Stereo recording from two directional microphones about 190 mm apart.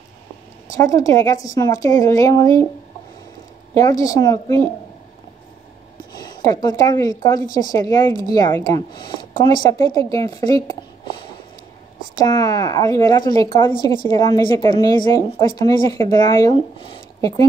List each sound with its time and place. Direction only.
0.7 s a woman's voice: 15° left (ahead or behind)
3.7 s speech: 20° left (ahead or behind)
6.1 s a woman's voice: 20° left (ahead or behind)
12.2 s a woman's voice: 20° left (ahead or behind)